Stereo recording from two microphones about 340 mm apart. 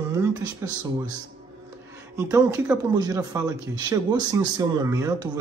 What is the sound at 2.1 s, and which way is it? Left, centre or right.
Speech, centre.